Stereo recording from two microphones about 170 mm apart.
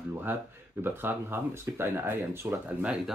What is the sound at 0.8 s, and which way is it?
Speech, 10° right (ahead or behind).